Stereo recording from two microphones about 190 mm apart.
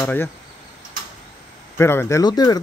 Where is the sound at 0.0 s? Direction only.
10° left (ahead or behind).